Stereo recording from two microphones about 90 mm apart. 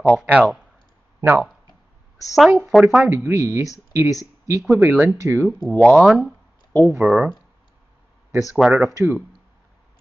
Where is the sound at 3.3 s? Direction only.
30° right (ahead or behind).